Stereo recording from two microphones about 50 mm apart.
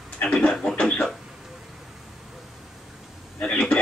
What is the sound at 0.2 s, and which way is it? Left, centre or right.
Speech, centre.